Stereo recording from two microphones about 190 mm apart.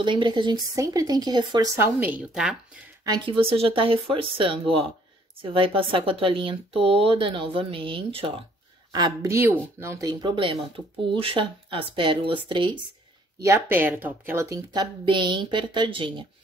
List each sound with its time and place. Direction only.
0.0 s speech: 25° right (ahead or behind)
1.8 s speech: 10° right (ahead or behind)
3.0 s speech: 25° right (ahead or behind)
13.4 s speech: 15° right (ahead or behind)